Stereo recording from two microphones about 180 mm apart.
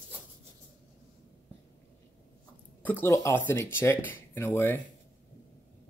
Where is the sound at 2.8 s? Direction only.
10° left (ahead or behind).